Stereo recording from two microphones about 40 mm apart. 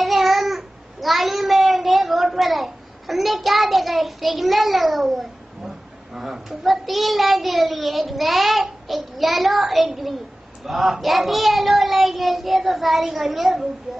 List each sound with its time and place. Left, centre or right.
0.0 s babbling: centre
6.1 s a child's voice: centre